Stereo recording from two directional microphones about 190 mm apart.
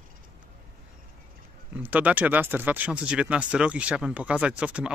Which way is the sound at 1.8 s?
10° right (ahead or behind).